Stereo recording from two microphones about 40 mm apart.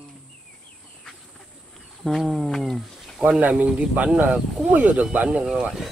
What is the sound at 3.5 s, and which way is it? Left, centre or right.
Speech, right.